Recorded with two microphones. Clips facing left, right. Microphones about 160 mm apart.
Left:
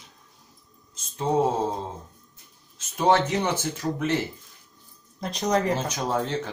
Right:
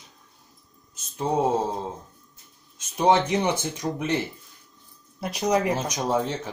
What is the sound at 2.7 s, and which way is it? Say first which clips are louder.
Speech: right 1 dB; 15° right (ahead or behind).